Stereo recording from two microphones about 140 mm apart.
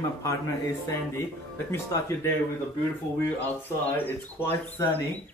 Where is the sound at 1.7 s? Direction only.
20° left (ahead or behind).